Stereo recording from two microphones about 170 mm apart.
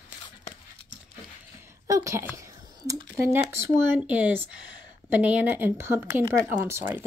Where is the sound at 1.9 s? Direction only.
20° right (ahead or behind).